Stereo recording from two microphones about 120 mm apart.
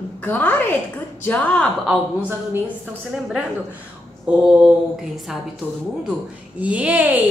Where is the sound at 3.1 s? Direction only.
5° right (ahead or behind).